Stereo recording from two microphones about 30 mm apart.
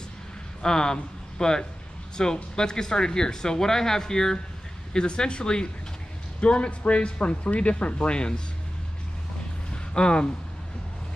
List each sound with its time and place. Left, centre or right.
0.6 s speech: left
4.9 s speech: left
6.4 s speech: left
9.7 s a sound: left